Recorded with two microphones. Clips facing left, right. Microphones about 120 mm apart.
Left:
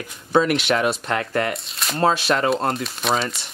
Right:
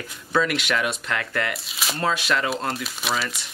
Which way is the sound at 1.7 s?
Centre (ahead or behind).